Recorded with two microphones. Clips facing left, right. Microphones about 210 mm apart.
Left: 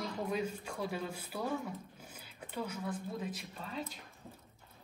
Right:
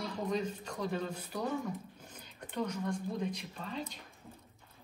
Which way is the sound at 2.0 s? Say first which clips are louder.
Right 1 dB; 10° left (ahead or behind).